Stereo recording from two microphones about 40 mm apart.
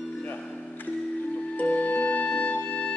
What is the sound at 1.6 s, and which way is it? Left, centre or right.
Music, left.